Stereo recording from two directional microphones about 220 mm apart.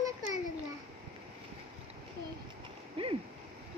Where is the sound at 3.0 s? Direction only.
25° right (ahead or behind).